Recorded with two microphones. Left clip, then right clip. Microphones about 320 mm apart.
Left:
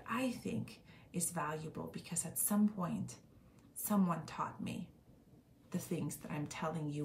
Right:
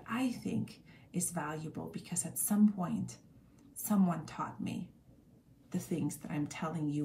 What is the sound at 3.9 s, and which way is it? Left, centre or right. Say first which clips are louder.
Speech: right 2 dB; centre.